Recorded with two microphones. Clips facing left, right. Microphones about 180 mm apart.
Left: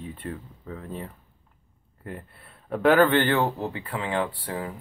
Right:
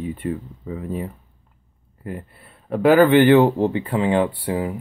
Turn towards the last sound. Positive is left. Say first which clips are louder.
# right 8 dB
turn(degrees=-15)  # may be behind; listen again after turning